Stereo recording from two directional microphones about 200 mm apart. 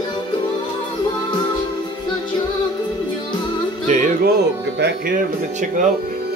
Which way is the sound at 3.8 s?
40° right (ahead or behind).